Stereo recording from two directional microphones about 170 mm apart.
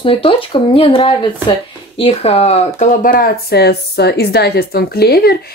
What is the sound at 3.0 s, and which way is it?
A woman's voice, 55° left (ahead or behind).